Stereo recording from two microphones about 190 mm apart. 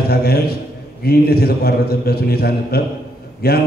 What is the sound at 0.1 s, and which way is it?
A man's voice, 60° left (ahead or behind).